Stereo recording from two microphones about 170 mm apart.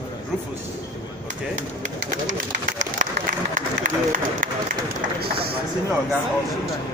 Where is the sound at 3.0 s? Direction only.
50° right (ahead or behind).